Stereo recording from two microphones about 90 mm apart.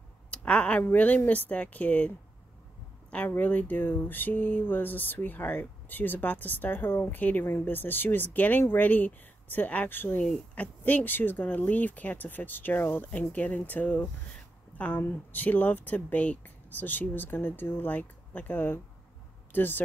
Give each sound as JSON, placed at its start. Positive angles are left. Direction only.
{"t": 0.3, "sound": "speech", "side_deg": 10}